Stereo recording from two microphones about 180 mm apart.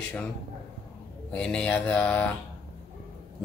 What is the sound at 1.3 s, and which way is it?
Speech, 5° left (ahead or behind).